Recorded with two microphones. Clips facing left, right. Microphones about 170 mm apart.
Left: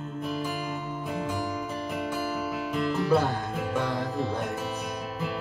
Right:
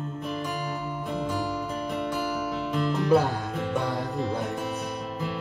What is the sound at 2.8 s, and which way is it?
Music, centre (ahead or behind).